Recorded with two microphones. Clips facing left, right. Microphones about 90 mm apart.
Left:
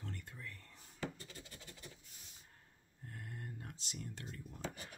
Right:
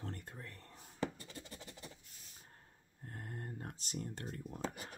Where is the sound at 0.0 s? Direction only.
40° right (ahead or behind).